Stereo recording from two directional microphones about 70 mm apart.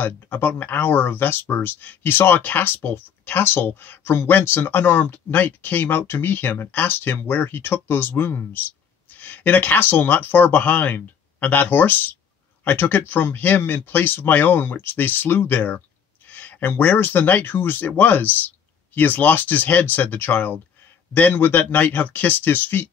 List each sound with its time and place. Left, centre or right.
0.0 s speech: left